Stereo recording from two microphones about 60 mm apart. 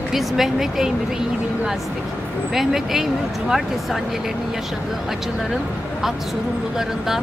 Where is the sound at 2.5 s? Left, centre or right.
Centre.